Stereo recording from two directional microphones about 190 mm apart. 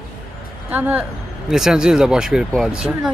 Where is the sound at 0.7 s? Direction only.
10° right (ahead or behind).